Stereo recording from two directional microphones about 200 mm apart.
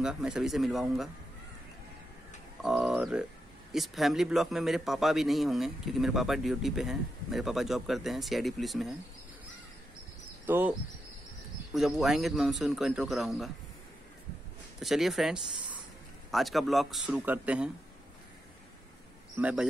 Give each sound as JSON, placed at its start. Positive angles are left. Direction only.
{"t": 0.0, "sound": "a man's voice", "side_deg": -5}
{"t": 2.6, "sound": "a man's voice", "side_deg": 0}
{"t": 10.4, "sound": "a man's voice", "side_deg": -10}
{"t": 14.8, "sound": "a man's voice", "side_deg": 0}
{"t": 19.3, "sound": "a man's voice", "side_deg": -5}